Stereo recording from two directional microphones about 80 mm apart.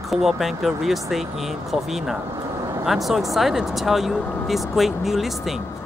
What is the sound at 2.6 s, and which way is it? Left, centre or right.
Vehicle, right.